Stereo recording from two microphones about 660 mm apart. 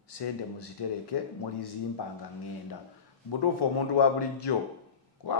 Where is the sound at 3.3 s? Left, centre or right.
Left.